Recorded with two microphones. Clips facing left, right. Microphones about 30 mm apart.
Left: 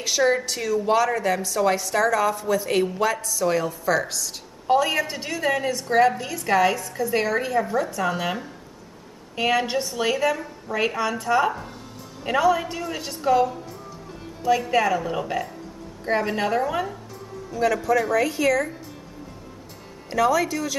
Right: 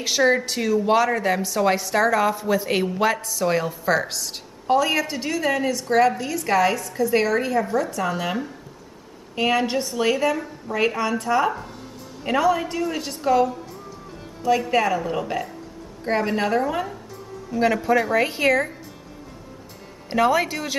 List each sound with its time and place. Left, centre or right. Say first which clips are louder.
0.0 s a woman's voice: right 2 dB; centre
4.8 s a woman's voice: right 2 dB; centre
17.5 s a woman's voice: right 2 dB; centre
18.1 s speech: right 1 dB; right
20.1 s speech: right 1 dB; right